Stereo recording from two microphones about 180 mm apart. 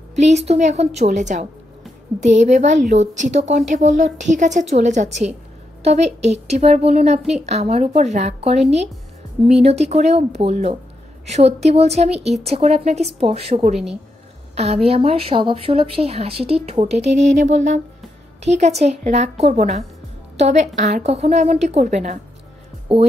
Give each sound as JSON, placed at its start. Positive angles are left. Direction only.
{"t": 0.1, "sound": "speech", "side_deg": -40}
{"t": 22.9, "sound": "speech", "side_deg": -30}